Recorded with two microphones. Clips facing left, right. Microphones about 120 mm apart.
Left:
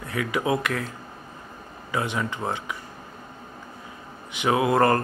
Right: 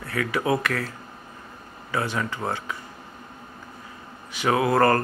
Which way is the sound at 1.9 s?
20° left (ahead or behind).